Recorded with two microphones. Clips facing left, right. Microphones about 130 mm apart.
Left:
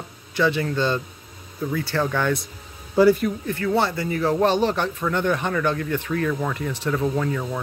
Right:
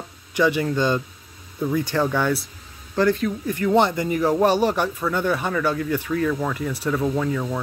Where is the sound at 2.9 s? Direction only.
10° left (ahead or behind).